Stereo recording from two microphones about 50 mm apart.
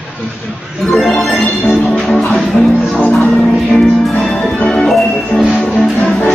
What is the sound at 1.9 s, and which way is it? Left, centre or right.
Music, centre.